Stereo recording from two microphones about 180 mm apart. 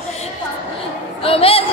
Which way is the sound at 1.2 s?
30° left (ahead or behind).